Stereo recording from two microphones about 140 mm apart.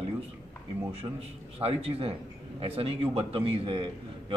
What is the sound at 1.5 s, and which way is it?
A man's voice, 45° right (ahead or behind).